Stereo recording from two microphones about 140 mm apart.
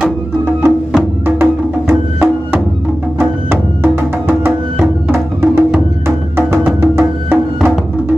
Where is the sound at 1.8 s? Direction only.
15° right (ahead or behind).